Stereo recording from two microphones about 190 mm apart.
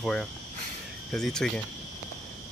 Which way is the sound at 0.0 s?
Centre (ahead or behind).